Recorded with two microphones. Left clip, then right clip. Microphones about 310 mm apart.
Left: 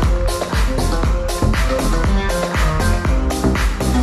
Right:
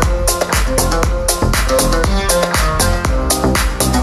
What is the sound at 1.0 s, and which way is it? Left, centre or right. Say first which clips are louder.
Music: right 5 dB; right.